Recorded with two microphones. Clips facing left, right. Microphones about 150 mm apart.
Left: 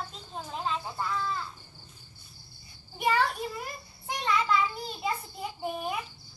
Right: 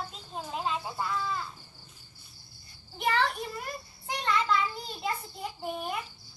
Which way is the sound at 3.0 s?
5° left (ahead or behind).